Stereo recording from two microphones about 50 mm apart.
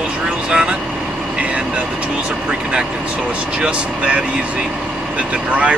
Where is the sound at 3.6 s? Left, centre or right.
Right.